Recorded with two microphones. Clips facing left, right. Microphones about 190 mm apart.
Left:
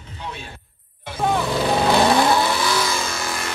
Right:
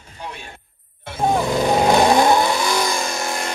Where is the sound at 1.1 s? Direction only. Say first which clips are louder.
Right 2 dB; 30° right (ahead or behind).